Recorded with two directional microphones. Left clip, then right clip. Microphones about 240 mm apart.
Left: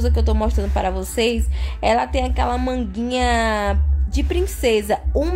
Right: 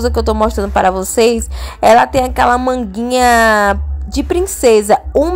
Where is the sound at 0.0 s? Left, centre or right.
Right.